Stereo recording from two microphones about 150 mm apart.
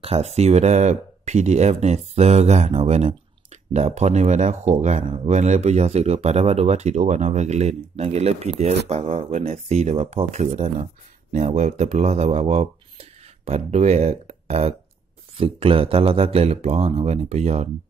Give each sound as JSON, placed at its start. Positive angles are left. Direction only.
{"t": 0.0, "sound": "speech", "side_deg": -45}